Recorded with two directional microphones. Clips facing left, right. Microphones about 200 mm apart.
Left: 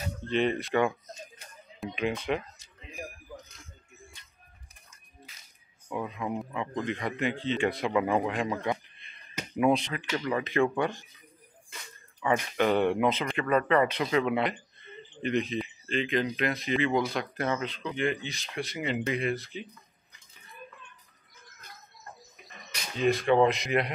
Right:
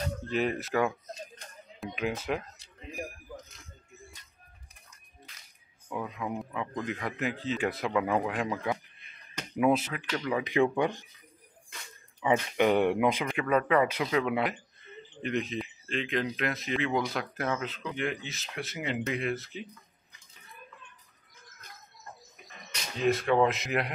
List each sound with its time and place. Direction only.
0.3 s speech: 5° right (ahead or behind)
1.3 s a sound: centre (ahead or behind)
5.9 s speech: 5° left (ahead or behind); by 11.1 s 15° right (ahead or behind)
12.2 s speech: 15° right (ahead or behind)
22.9 s speech: centre (ahead or behind)